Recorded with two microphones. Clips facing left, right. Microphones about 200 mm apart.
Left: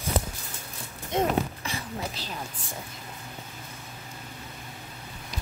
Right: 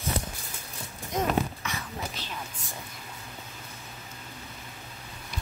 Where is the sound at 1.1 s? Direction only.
30° left (ahead or behind).